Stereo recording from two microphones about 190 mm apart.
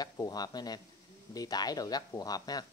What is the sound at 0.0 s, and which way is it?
Speech, 20° left (ahead or behind).